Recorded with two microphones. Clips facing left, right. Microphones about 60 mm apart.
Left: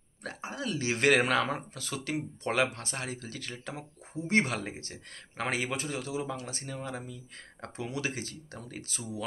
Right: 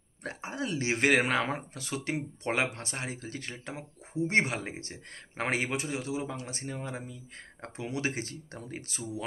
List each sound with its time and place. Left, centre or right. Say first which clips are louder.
0.2 s speech: right 1 dB; right
5.7 s speech: right 1 dB; right